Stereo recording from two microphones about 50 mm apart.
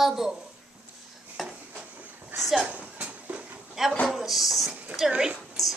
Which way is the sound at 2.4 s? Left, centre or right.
Centre.